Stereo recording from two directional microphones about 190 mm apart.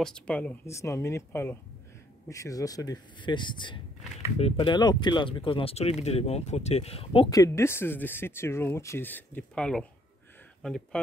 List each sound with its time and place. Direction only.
0.0 s speech: 5° left (ahead or behind)